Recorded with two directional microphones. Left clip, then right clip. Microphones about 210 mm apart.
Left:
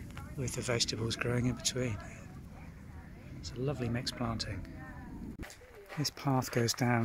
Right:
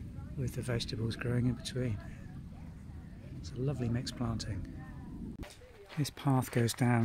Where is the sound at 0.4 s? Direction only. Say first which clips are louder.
Left 5 dB; centre (ahead or behind).